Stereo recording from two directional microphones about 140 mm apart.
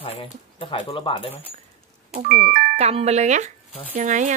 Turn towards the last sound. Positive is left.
turn(degrees=-60)  # may be behind; listen again after turning